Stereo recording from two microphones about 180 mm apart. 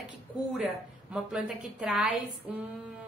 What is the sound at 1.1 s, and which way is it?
A woman's voice, 5° right (ahead or behind).